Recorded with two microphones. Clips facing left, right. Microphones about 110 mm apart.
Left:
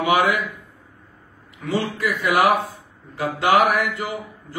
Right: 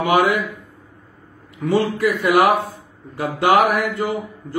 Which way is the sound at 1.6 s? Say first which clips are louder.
Right 6 dB; 45° right (ahead or behind).